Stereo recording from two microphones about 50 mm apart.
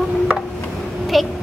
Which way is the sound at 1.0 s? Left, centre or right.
Centre.